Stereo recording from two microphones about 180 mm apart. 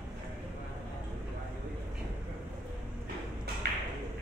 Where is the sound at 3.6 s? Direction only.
65° right (ahead or behind).